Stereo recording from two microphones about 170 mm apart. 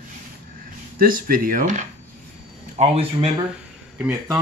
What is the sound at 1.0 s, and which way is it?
Speech, 55° right (ahead or behind).